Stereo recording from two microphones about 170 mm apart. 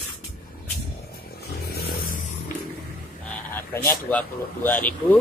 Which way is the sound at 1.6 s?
65° left (ahead or behind).